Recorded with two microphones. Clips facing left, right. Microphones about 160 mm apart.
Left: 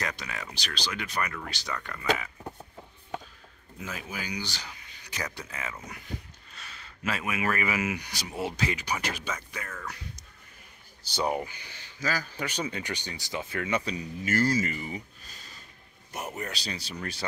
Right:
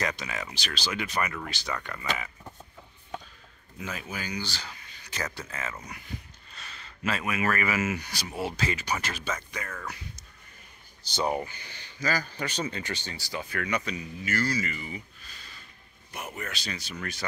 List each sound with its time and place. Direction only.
0.0 s speech: centre (ahead or behind)
3.8 s speech: 5° left (ahead or behind)
11.1 s speech: 10° left (ahead or behind); by 14.0 s 30° left (ahead or behind)
14.2 s a man's voice: 45° left (ahead or behind)